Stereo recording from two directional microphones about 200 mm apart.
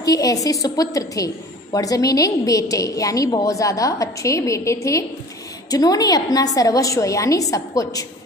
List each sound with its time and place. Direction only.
0.0 s a woman's voice: 15° left (ahead or behind)